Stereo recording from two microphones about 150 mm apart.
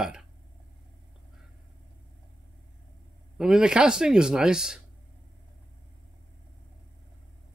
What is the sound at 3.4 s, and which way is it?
Speech, 5° right (ahead or behind).